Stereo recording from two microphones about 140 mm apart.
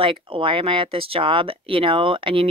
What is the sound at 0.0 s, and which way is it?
Speech, 40° right (ahead or behind).